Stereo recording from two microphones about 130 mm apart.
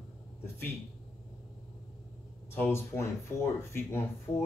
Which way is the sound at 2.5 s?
20° left (ahead or behind).